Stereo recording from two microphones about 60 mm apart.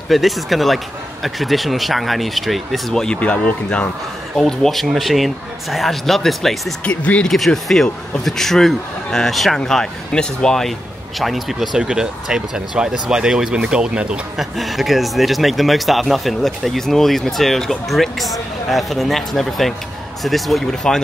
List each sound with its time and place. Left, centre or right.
0.1 s speech: centre
3.2 s speech: left
4.4 s speech: centre
6.8 s speech: left
7.2 s speech: centre
11.1 s speech: centre
11.8 s speech: centre
14.3 s speech: centre